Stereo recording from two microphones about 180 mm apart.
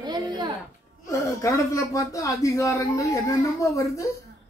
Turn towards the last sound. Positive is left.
turn(degrees=15)  # may be behind; listen again after turning